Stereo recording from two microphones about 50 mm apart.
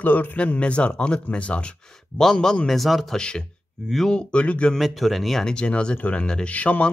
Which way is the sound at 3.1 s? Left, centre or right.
Centre.